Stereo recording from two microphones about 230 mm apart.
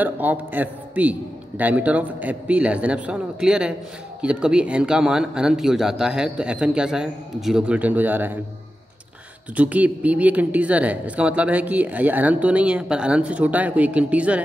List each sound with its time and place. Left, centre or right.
0.0 s a man's voice: centre
9.6 s speech: centre